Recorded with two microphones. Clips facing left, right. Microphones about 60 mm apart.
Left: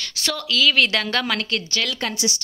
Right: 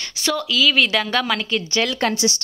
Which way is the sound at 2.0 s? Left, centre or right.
Right.